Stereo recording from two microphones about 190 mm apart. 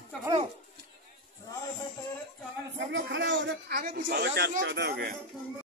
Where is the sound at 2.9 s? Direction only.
75° right (ahead or behind).